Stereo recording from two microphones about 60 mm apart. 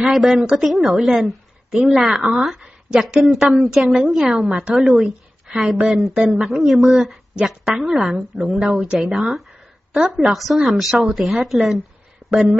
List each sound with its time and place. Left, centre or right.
0.1 s speech: centre
2.9 s speech: centre
3.6 s a woman's voice: centre
6.1 s speech: right
6.4 s speech: centre